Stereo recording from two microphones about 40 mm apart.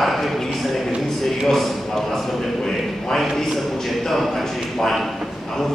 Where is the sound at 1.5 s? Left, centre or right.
Centre.